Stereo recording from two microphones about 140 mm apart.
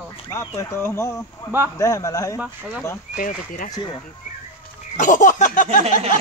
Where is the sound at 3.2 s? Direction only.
75° left (ahead or behind).